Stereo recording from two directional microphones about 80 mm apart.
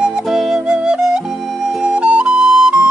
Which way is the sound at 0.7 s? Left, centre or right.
Centre.